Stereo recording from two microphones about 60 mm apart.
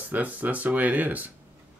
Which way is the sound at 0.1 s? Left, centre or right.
Right.